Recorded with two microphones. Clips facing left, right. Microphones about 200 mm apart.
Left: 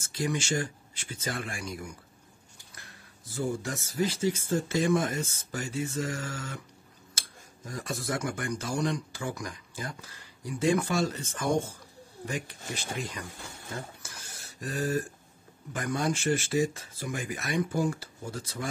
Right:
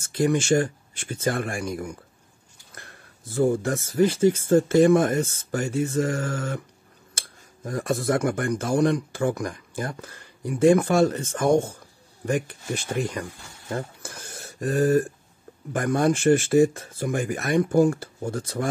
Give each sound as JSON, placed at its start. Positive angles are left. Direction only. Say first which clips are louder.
{"t": 0.0, "sound": "speech", "louder": "right 9 dB", "side_deg": -50}